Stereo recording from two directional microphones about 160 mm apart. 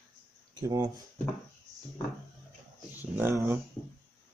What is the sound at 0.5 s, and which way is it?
Speech, 20° right (ahead or behind).